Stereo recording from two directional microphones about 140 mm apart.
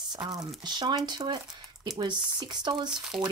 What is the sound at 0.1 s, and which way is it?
Speech, 30° right (ahead or behind).